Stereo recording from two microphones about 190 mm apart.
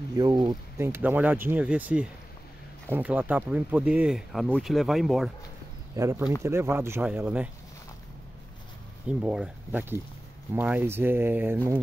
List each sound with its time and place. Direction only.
0.1 s speech: 20° right (ahead or behind); by 5.3 s centre (ahead or behind)
5.9 s speech: 15° right (ahead or behind)
9.0 s speech: 5° right (ahead or behind)